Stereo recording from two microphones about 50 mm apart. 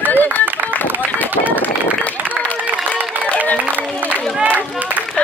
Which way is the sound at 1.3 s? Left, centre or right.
Right.